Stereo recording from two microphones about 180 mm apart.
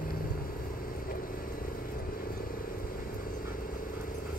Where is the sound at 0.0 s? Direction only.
50° left (ahead or behind).